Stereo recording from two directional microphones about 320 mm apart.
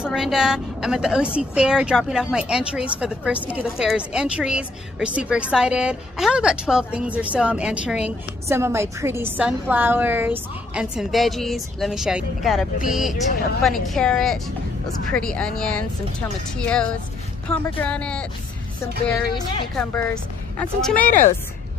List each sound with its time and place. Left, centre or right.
0.0 s a woman's voice: centre